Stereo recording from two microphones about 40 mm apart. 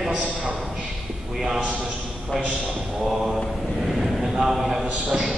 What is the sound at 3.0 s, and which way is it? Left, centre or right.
Mantra, centre.